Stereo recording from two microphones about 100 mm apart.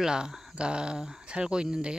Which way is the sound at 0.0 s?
5° right (ahead or behind).